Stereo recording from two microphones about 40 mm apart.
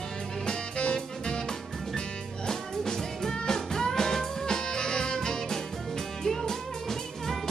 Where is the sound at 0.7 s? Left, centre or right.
Left.